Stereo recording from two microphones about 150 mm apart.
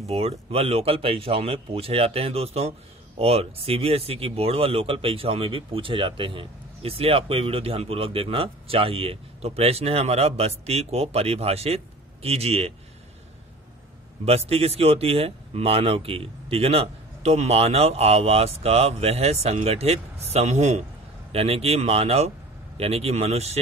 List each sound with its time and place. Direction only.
0.0 s speech: 40° right (ahead or behind)
14.2 s a man's voice: 45° right (ahead or behind)